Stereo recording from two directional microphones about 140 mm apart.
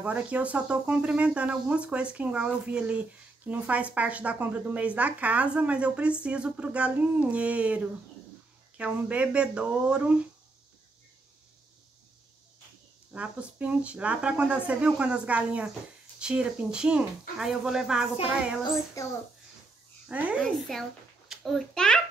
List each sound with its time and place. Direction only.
0.0 s speech: 10° right (ahead or behind)
13.1 s speech: 10° right (ahead or behind)
19.0 s a child's voice: 25° left (ahead or behind)
20.1 s speech: 10° right (ahead or behind)
20.4 s a child's voice: centre (ahead or behind)